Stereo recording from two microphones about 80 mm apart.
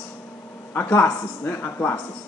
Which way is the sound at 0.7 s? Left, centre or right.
Left.